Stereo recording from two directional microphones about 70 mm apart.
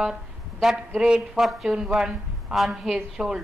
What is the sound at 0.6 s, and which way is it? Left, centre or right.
A woman's voice, centre.